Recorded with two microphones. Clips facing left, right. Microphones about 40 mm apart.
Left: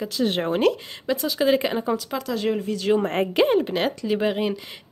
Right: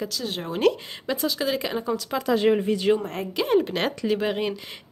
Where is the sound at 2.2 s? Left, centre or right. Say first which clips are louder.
Right 7 dB; centre.